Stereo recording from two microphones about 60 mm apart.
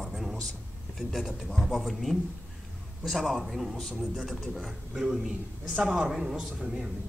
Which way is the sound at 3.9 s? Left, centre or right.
Centre.